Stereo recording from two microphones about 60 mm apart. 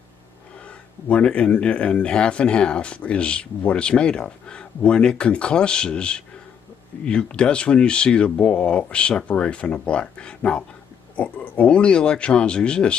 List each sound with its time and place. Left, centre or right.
0.7 s speech: left